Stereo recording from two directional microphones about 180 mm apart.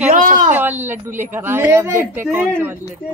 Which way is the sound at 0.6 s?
10° right (ahead or behind).